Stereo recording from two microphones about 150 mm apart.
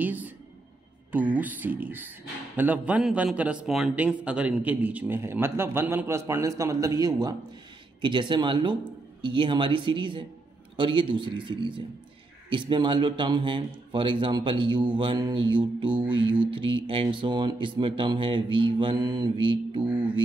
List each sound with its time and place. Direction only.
0.0 s a man's voice: 10° right (ahead or behind); by 19.8 s 35° right (ahead or behind)